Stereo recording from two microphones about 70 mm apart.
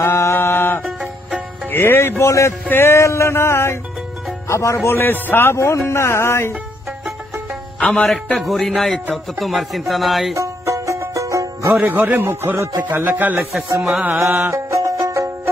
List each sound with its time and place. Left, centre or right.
0.0 s mantra: left
1.7 s speech: left
4.9 s speech: left
7.8 s a man's voice: centre
10.3 s music: right
11.7 s speech: right
13.7 s a man's voice: centre
14.1 s music: right
14.7 s music: right